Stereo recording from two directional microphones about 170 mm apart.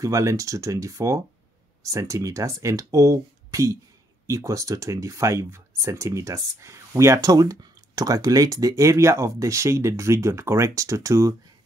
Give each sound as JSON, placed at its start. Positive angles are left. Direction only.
{"t": 0.0, "sound": "speech", "side_deg": -20}